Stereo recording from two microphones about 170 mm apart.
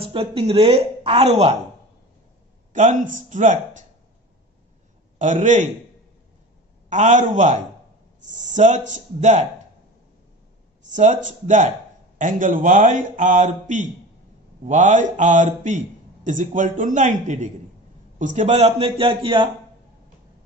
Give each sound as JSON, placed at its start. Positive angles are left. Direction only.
{"t": 0.0, "sound": "speech", "side_deg": -35}
{"t": 2.7, "sound": "speech", "side_deg": -45}
{"t": 5.2, "sound": "speech", "side_deg": -45}
{"t": 6.9, "sound": "speech", "side_deg": -45}
{"t": 10.9, "sound": "speech", "side_deg": -45}